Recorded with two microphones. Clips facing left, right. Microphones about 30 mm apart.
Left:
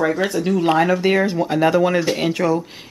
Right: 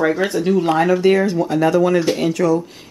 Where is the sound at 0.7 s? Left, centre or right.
Centre.